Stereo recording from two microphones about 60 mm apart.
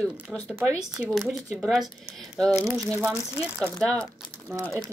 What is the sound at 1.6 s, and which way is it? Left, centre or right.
Speech, centre.